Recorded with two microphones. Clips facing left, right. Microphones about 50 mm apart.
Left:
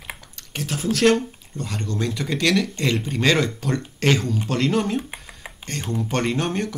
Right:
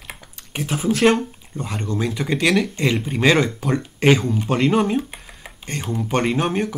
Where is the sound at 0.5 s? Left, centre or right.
Centre.